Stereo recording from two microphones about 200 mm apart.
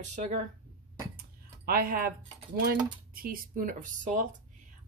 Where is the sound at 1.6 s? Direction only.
45° right (ahead or behind).